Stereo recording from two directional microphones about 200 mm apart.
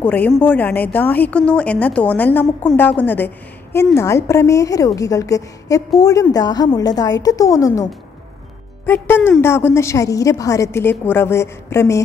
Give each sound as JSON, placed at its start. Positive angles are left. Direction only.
{"t": 0.0, "sound": "a woman's voice", "side_deg": 10}